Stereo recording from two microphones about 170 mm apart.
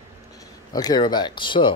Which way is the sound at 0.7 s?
25° left (ahead or behind).